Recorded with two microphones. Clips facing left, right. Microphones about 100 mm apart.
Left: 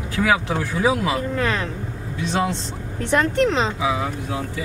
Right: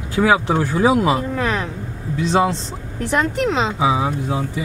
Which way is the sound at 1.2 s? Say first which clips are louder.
Right 1 dB; 10° right (ahead or behind).